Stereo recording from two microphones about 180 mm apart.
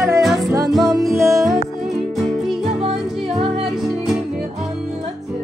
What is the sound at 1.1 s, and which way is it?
Music, 15° right (ahead or behind).